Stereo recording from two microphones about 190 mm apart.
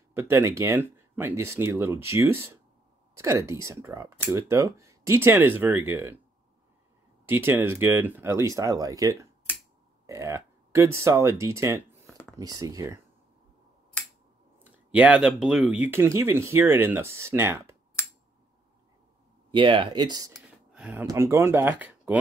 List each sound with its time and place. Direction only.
0.1 s speech: 15° right (ahead or behind)
7.2 s speech: 10° right (ahead or behind)
14.6 s speech: 5° right (ahead or behind)
19.5 s speech: 25° right (ahead or behind)
20.3 s a sound: 5° right (ahead or behind)
21.1 s speech: 15° right (ahead or behind)